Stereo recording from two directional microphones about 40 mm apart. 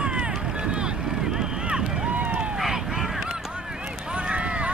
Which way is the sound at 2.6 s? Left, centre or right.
Centre.